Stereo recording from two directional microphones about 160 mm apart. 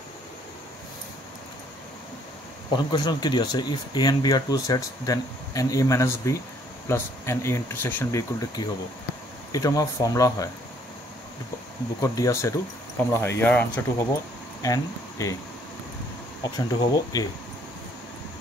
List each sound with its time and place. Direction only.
2.7 s speech: 25° left (ahead or behind)
12.0 s speech: 20° left (ahead or behind)
16.4 s speech: 25° left (ahead or behind)